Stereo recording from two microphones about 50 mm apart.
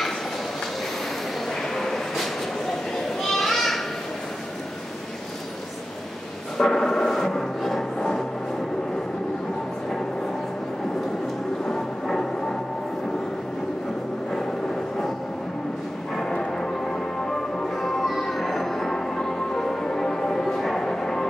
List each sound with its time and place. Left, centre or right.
1.5 s a sound: centre
3.2 s children playing: centre
6.6 s timpani: centre
8.0 s a sound: centre
11.6 s music: centre
16.2 s music: centre